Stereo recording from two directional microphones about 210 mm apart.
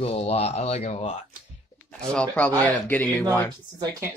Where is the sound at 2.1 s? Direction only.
5° left (ahead or behind).